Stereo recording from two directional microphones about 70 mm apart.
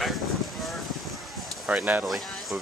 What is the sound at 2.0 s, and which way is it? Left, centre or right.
Speech, centre.